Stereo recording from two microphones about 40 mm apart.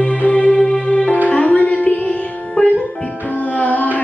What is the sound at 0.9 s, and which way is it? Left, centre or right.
Music, left.